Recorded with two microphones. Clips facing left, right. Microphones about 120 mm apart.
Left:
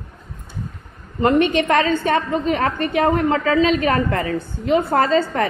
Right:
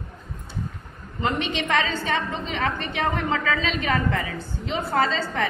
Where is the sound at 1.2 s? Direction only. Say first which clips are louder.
Left 10 dB; 50° left (ahead or behind).